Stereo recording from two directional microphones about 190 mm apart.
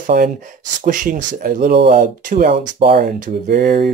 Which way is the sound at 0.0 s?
50° right (ahead or behind).